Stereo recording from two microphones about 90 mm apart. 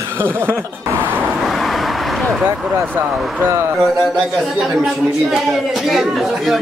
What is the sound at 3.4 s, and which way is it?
Speech, 30° right (ahead or behind).